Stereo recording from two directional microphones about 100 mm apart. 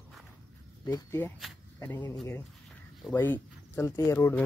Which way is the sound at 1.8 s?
20° left (ahead or behind).